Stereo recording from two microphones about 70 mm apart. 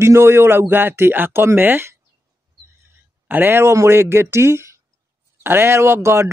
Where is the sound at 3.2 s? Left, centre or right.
Right.